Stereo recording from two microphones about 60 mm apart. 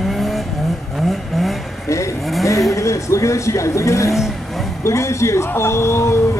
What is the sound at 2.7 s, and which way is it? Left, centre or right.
Speech, left.